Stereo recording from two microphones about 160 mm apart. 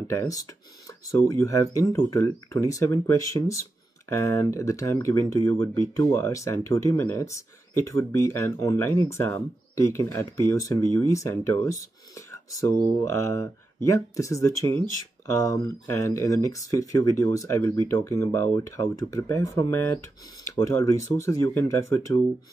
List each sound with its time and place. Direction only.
0.1 s speech: 20° left (ahead or behind)